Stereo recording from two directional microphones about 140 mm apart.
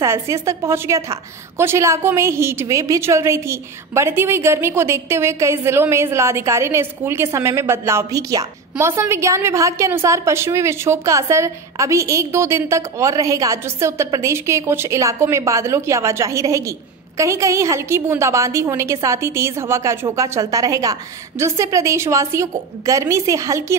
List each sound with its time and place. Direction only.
0.0 s a woman's voice: 20° right (ahead or behind)